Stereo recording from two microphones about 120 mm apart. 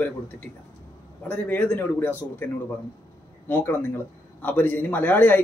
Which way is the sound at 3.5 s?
20° left (ahead or behind).